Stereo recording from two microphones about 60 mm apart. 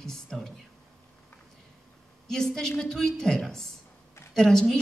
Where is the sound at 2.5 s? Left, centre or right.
Centre.